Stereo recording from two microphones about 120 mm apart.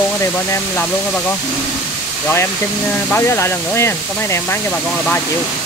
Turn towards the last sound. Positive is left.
turn(degrees=20)  # may be behind; listen again after turning